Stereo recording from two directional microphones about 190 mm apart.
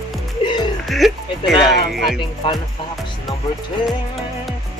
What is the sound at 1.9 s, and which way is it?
Music, centre (ahead or behind).